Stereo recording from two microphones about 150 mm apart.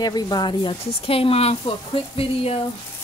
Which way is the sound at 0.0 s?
25° left (ahead or behind).